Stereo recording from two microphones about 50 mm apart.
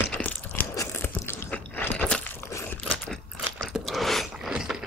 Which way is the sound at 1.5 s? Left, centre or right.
Left.